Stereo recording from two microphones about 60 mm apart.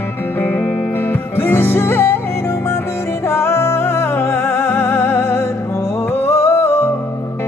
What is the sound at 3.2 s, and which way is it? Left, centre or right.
Music, left.